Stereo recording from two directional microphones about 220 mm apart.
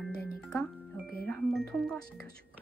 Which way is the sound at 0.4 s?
5° left (ahead or behind).